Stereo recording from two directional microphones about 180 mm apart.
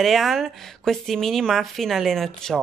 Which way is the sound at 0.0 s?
Centre (ahead or behind).